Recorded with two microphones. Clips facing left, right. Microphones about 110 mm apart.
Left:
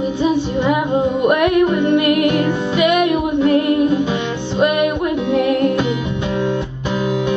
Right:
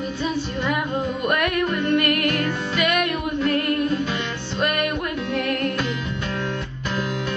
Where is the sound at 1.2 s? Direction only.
15° left (ahead or behind).